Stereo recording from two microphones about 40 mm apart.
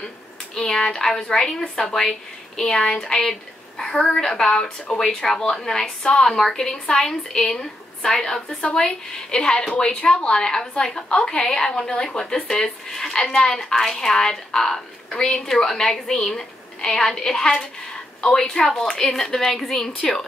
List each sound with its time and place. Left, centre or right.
0.6 s a woman's voice: centre